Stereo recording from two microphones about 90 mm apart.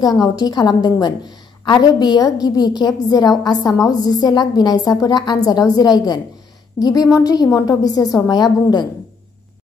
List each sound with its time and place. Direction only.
0.4 s a woman's voice: 50° left (ahead or behind)